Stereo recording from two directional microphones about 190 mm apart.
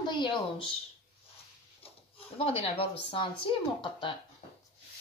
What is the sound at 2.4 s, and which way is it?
Speech, 30° left (ahead or behind).